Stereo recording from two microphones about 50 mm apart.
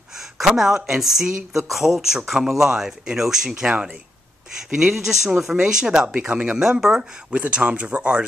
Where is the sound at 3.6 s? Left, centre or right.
Centre.